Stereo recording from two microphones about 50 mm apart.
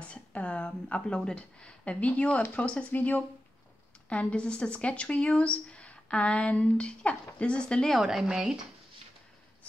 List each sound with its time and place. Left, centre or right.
0.0 s a sound: left
0.7 s speech: centre
8.0 s speech: centre